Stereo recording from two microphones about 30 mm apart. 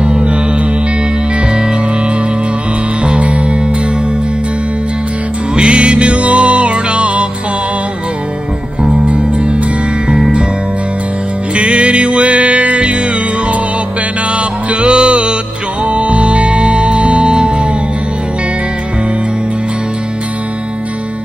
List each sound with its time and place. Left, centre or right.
0.0 s music: right
3.2 s music: right
5.5 s music: right
8.9 s music: right
10.0 s music: right
11.5 s music: right
14.3 s music: right